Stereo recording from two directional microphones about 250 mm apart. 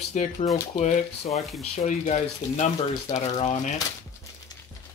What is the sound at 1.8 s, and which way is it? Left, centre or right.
Speech, left.